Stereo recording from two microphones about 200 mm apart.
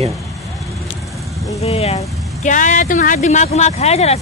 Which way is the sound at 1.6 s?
30° left (ahead or behind).